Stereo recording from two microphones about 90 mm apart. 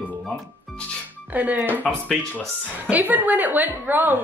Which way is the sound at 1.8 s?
10° left (ahead or behind).